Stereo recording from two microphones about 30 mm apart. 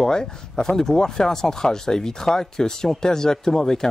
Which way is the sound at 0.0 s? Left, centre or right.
Left.